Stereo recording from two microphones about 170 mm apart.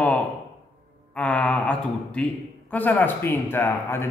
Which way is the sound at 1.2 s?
5° left (ahead or behind).